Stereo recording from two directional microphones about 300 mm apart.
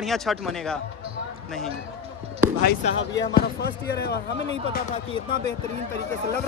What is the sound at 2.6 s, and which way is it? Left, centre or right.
Speech, left.